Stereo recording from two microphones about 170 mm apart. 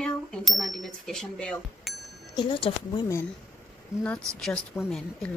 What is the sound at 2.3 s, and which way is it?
Speech, 25° left (ahead or behind).